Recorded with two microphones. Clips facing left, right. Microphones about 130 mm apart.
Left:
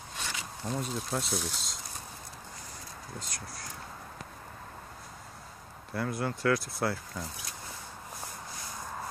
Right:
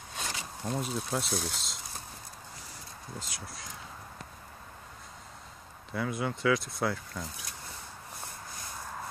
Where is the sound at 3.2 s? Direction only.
Centre (ahead or behind).